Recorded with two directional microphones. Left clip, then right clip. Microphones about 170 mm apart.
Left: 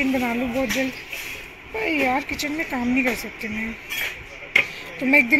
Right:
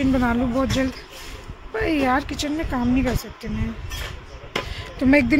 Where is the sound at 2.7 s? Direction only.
15° right (ahead or behind).